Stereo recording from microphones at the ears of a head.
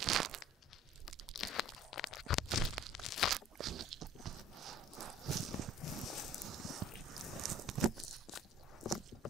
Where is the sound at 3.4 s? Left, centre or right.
Right.